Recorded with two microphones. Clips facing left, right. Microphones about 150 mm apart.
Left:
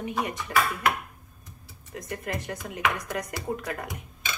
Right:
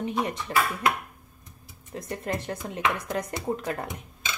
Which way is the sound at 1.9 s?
25° right (ahead or behind).